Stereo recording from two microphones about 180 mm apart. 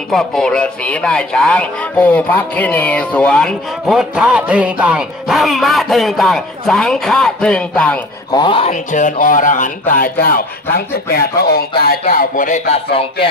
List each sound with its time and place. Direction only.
0.1 s speech: centre (ahead or behind)
8.3 s speech: 25° left (ahead or behind)
8.9 s a man's voice: 45° left (ahead or behind)